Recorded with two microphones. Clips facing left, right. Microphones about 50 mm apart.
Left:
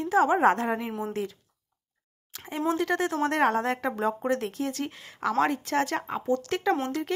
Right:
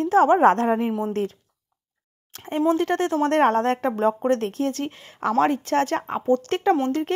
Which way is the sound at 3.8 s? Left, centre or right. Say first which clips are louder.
Right 6 dB; right.